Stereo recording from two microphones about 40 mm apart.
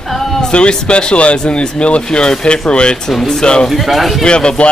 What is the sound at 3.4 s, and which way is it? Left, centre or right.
Speech, left.